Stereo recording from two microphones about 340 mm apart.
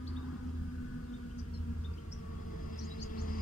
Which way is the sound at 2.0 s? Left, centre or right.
Left.